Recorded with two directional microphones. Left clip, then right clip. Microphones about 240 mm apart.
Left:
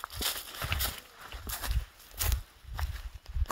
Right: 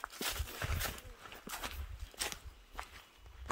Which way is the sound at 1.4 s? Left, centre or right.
Left.